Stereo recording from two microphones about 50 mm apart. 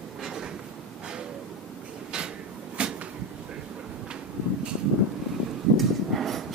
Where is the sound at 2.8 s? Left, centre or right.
Right.